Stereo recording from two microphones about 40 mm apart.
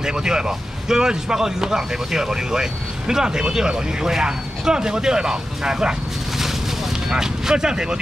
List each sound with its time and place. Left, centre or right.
0.0 s a man's voice: centre
6.3 s vehicle: centre